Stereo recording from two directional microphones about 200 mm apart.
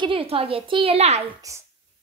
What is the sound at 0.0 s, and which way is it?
A woman's voice, 25° right (ahead or behind).